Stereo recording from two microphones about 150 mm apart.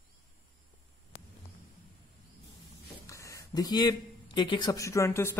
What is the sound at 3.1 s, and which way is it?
A man's voice, 20° left (ahead or behind).